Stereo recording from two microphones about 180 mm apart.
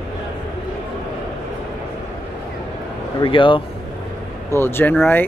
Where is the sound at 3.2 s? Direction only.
30° left (ahead or behind).